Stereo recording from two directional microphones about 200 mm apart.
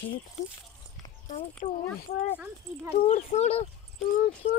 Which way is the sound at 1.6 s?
35° left (ahead or behind).